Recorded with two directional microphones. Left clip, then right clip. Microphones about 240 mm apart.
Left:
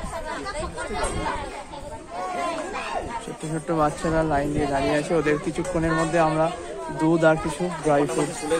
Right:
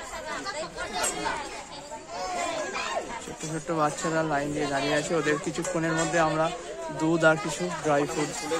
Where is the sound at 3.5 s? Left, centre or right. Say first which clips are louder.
Left 4 dB; centre.